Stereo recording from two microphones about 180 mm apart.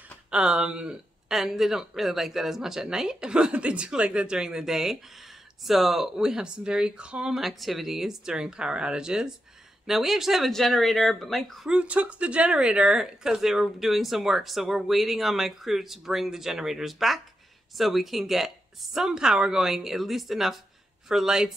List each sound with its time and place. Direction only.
0.3 s speech: 5° right (ahead or behind)